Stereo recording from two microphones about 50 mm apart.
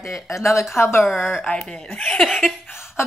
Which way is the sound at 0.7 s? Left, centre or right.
Left.